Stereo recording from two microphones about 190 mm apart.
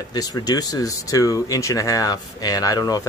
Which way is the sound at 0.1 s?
20° left (ahead or behind).